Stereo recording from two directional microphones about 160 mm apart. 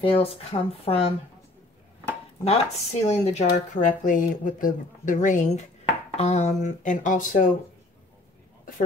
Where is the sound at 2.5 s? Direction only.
45° left (ahead or behind).